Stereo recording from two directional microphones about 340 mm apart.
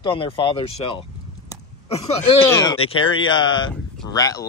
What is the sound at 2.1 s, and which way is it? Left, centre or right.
Speech, centre.